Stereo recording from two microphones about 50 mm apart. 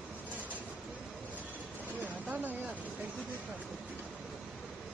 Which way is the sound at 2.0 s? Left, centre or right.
Right.